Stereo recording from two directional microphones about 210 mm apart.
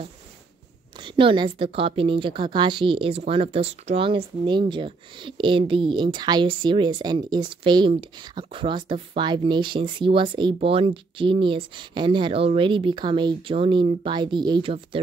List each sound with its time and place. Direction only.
0.9 s speech: 25° right (ahead or behind)